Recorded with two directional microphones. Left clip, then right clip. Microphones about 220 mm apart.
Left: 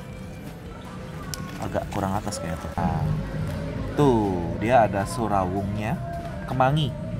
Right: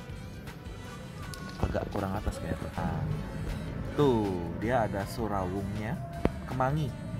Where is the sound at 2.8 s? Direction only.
Centre (ahead or behind).